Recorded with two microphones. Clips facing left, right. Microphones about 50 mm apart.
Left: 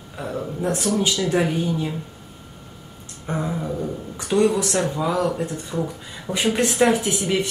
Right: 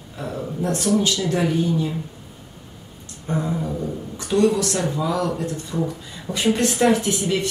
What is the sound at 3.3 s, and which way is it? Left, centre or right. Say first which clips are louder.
Speech: right 1 dB; centre.